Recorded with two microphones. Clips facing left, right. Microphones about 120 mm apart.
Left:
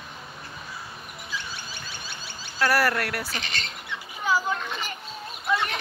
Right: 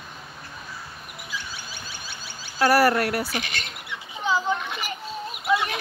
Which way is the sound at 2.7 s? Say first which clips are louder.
Right 5 dB; 20° right (ahead or behind).